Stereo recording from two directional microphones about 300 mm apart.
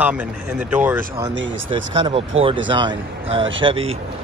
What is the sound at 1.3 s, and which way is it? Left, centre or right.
Speech, right.